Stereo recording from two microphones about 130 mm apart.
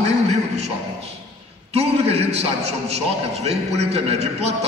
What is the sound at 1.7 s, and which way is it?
A man's voice, 55° right (ahead or behind).